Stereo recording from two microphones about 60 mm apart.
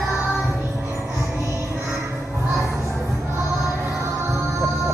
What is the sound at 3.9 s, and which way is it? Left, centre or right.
Music, right.